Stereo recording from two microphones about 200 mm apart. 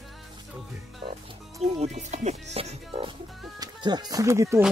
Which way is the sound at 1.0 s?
25° right (ahead or behind).